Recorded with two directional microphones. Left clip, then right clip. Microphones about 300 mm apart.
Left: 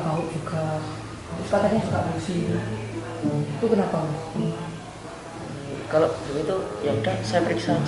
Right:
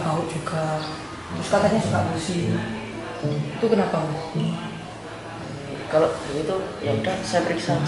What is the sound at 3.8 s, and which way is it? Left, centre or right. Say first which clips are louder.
Speech: right 2 dB; centre.